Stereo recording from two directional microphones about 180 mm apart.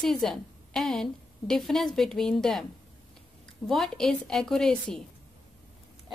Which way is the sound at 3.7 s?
Centre (ahead or behind).